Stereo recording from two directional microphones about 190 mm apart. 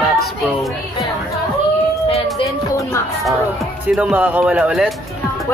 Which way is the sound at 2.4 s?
15° left (ahead or behind).